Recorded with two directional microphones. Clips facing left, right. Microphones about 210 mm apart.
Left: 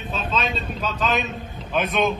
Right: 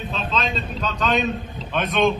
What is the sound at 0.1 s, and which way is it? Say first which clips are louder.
A man's voice: left 1 dB; 5° left (ahead or behind).